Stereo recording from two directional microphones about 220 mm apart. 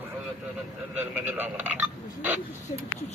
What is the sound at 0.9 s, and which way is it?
Speech, 10° right (ahead or behind).